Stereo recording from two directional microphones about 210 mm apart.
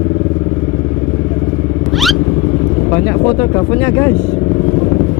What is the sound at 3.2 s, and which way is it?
Speech, 20° left (ahead or behind).